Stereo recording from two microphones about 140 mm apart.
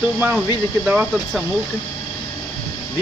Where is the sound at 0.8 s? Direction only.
10° right (ahead or behind).